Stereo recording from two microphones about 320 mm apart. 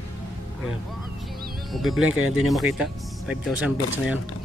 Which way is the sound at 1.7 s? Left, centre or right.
Centre.